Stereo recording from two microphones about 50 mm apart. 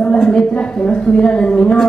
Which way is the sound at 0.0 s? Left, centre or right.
Centre.